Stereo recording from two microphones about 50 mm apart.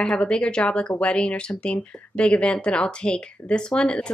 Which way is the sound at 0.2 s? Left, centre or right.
Left.